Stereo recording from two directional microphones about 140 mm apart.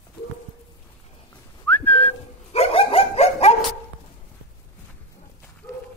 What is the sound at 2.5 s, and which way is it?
Dog, 45° left (ahead or behind).